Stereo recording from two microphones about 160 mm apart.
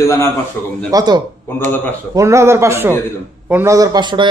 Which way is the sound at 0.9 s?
25° right (ahead or behind).